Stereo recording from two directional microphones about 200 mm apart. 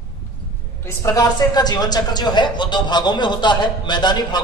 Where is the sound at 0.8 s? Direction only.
15° left (ahead or behind).